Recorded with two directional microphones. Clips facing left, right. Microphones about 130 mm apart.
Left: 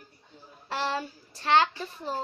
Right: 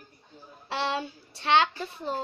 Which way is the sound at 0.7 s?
20° right (ahead or behind).